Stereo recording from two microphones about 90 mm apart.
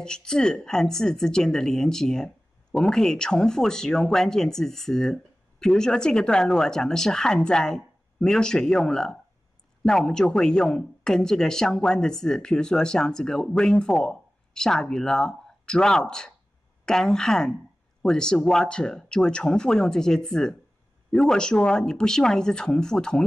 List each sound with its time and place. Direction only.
0.0 s speech: 10° left (ahead or behind)